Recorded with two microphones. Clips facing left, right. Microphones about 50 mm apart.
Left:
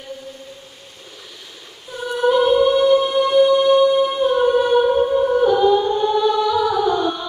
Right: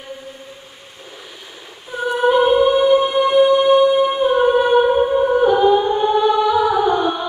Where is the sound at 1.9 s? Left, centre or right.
Centre.